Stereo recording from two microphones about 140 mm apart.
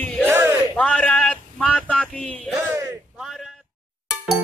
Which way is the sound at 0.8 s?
10° left (ahead or behind).